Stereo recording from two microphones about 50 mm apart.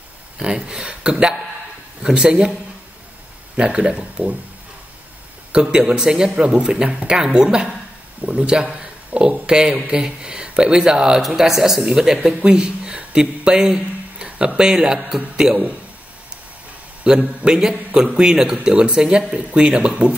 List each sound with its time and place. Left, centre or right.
0.4 s a woman's voice: centre
3.5 s speech: centre
5.5 s a woman's voice: centre
17.0 s a woman's voice: centre